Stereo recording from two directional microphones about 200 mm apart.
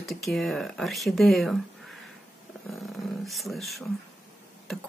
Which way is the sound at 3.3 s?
Centre (ahead or behind).